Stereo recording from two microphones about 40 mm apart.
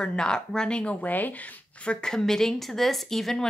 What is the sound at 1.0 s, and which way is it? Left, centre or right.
Speech, left.